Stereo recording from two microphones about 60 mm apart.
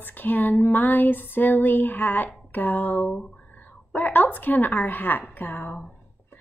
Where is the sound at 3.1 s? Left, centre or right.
Centre.